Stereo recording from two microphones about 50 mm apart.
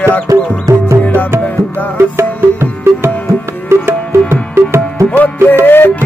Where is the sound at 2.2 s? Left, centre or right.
Right.